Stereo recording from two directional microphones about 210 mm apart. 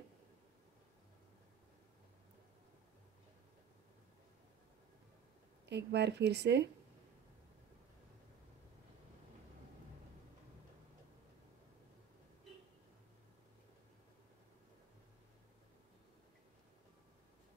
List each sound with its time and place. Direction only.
5.7 s speech: 55° right (ahead or behind)